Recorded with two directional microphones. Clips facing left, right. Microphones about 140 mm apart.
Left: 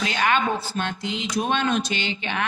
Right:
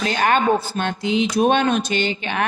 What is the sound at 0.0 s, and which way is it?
Speech, 40° right (ahead or behind).